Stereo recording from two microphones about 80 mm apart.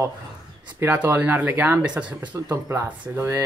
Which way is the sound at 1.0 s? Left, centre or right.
Right.